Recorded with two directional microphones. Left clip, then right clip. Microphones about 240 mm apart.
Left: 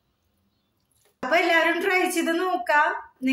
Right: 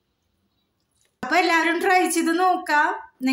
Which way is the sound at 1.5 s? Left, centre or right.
Right.